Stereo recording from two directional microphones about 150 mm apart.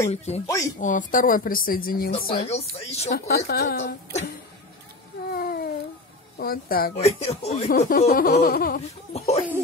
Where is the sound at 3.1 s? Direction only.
90° left.